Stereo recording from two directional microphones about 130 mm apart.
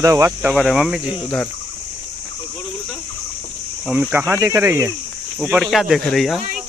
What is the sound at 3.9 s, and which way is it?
Speech, 15° right (ahead or behind).